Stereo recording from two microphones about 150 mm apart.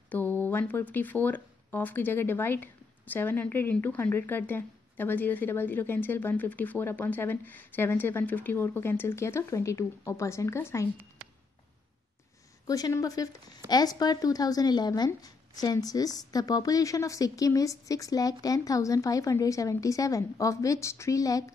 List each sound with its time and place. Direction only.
0.1 s speech: 10° left (ahead or behind)
12.6 s speech: 25° left (ahead or behind)